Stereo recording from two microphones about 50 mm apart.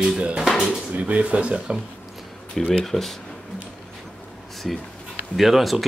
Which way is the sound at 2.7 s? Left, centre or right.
Centre.